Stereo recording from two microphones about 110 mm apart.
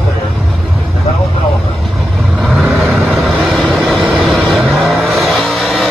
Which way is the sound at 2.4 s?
Centre (ahead or behind).